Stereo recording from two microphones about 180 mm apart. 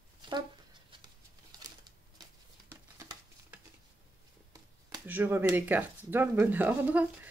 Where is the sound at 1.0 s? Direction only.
25° right (ahead or behind).